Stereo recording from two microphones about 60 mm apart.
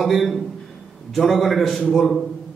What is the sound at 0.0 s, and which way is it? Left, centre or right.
A man's voice, centre.